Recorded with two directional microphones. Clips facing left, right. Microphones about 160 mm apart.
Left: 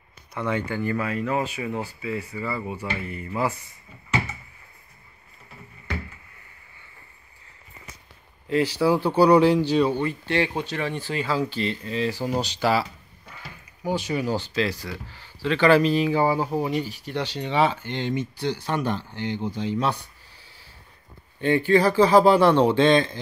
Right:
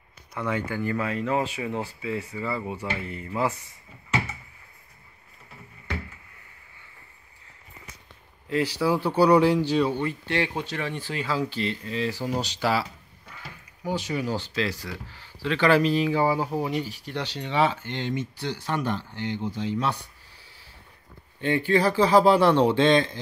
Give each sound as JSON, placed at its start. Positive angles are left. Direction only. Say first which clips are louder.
{"t": 0.4, "sound": "speech", "louder": "left 2 dB", "side_deg": -5}
{"t": 0.8, "sound": "speech", "louder": "right 1 dB", "side_deg": -20}
{"t": 8.7, "sound": "speech", "louder": "left 3 dB", "side_deg": 35}
{"t": 13.8, "sound": "speech", "louder": "left 3 dB", "side_deg": 10}
{"t": 15.4, "sound": "speech", "louder": "left 3 dB", "side_deg": 30}
{"t": 15.9, "sound": "speech", "louder": "left 2 dB", "side_deg": 15}
{"t": 16.2, "sound": "speech", "louder": "left 2 dB", "side_deg": -5}
{"t": 21.4, "sound": "speech", "louder": "left 3 dB", "side_deg": 50}